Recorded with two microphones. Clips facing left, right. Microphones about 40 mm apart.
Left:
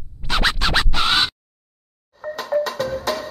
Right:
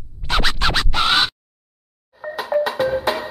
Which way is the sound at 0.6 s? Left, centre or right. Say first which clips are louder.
Right 1 dB; centre.